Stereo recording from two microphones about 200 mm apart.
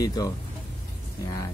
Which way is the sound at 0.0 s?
20° left (ahead or behind).